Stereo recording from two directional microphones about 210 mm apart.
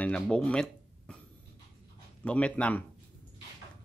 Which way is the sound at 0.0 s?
5° left (ahead or behind).